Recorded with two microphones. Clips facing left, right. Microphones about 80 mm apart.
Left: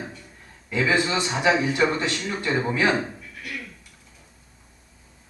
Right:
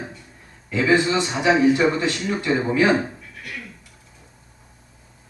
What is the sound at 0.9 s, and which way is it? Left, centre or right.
Speech, right.